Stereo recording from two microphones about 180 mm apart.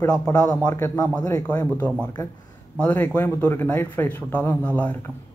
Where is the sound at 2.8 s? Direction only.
10° left (ahead or behind).